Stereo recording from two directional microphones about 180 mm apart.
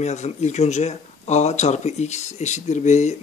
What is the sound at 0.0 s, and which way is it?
Speech, 40° left (ahead or behind).